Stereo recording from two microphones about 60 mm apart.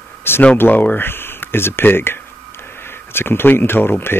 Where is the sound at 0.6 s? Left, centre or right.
Left.